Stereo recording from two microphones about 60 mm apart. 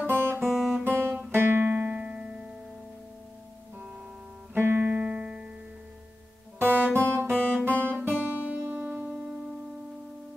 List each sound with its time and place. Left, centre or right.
0.0 s guitar: right
0.5 s guitar: centre
1.3 s music: right
1.9 s music: centre
4.6 s music: right
4.8 s music: centre
6.6 s music: right